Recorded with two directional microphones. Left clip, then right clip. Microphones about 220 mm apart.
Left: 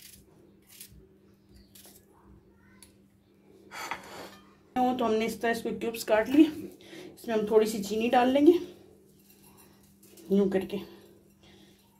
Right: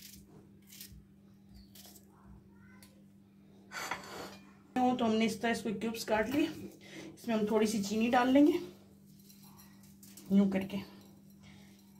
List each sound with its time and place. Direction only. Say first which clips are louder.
4.9 s a woman's voice: left 4 dB; 30° left (ahead or behind)
10.3 s a woman's voice: left 7 dB; 35° left (ahead or behind)